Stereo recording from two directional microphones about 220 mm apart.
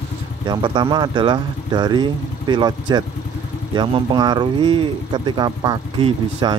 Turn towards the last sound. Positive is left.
turn(degrees=-20)  # may be behind; listen again after turning